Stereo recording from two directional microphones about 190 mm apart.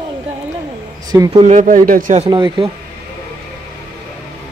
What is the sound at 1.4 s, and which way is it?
Speech, 40° right (ahead or behind).